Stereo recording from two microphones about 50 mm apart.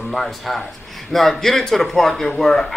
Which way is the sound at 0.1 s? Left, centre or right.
Centre.